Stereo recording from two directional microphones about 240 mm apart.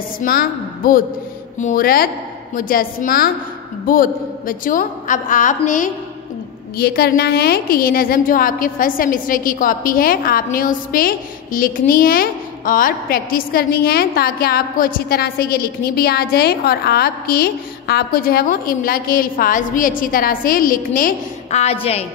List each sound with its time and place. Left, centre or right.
0.2 s a woman's voice: left